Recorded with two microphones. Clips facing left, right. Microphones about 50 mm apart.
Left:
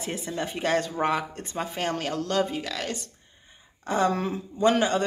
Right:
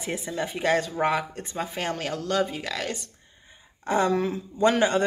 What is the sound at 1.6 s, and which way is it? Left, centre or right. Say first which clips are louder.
Speech: left 1 dB; centre.